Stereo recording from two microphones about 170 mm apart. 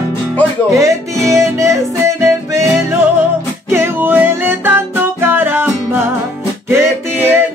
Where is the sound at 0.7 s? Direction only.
20° right (ahead or behind).